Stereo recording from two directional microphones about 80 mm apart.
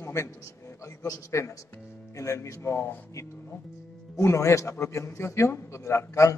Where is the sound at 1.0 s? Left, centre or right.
Left.